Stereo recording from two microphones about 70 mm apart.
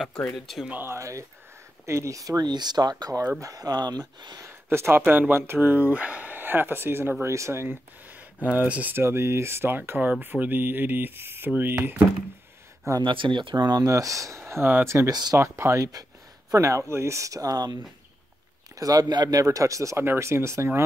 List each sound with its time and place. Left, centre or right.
0.2 s speech: centre
0.8 s speech: right
4.4 s speech: right
8.1 s speech: right
8.9 s speech: right
12.9 s speech: right
13.2 s speech: right
13.6 s speech: right
14.5 s speech: right
15.0 s speech: right
15.3 s speech: right
15.8 s speech: right
19.4 s speech: right